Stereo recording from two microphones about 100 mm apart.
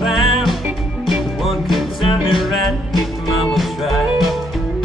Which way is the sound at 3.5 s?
Centre (ahead or behind).